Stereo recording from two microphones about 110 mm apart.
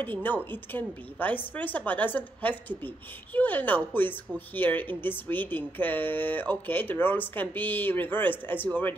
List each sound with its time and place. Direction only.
0.0 s speech: 15° left (ahead or behind)